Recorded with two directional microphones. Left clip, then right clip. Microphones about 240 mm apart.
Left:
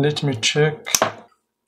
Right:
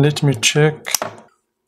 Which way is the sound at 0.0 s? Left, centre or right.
Centre.